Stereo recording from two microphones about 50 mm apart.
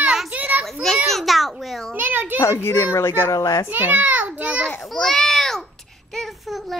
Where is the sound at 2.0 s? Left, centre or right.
Right.